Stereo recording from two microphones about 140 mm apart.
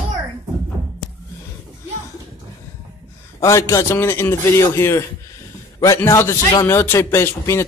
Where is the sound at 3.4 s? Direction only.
20° left (ahead or behind).